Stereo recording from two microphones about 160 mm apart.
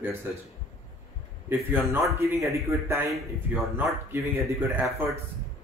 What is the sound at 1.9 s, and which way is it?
A man's voice, 20° right (ahead or behind).